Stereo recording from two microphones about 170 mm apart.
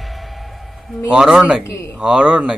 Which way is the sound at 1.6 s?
15° left (ahead or behind).